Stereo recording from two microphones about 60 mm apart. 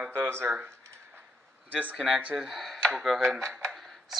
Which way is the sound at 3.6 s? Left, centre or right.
Centre.